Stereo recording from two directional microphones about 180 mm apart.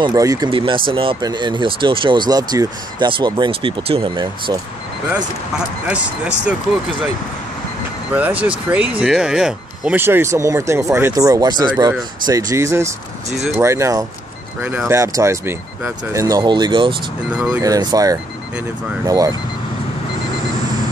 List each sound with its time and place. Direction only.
0.0 s speech: 20° right (ahead or behind)
5.9 s speech: 5° right (ahead or behind)
8.1 s speech: 10° right (ahead or behind); by 16.9 s 25° right (ahead or behind)
17.3 s speech: 5° right (ahead or behind)
17.6 s speech: 20° right (ahead or behind)